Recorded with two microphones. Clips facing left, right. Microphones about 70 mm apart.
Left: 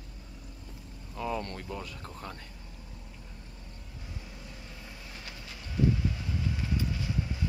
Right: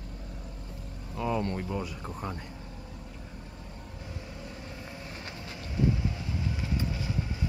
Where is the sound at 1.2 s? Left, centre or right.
Centre.